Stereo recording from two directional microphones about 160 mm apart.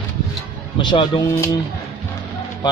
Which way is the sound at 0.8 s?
30° left (ahead or behind).